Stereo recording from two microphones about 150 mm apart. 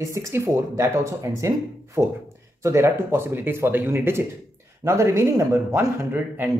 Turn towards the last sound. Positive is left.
turn(degrees=-15)  # may be behind; listen again after turning